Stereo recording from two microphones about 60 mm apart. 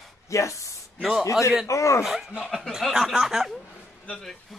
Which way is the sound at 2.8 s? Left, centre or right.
Centre.